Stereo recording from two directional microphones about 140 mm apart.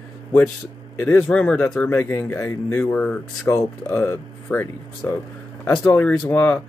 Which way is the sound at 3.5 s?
20° left (ahead or behind).